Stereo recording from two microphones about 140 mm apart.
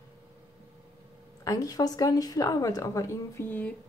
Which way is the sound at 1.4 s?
25° left (ahead or behind).